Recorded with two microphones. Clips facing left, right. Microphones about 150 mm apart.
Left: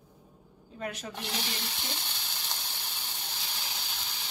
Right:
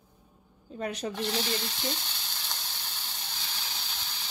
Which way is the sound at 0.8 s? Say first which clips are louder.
Right 4 dB; 35° right (ahead or behind).